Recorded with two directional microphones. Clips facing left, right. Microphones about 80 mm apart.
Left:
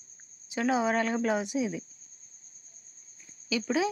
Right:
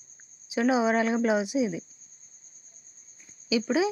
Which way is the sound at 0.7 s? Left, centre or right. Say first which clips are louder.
Right 2 dB; centre.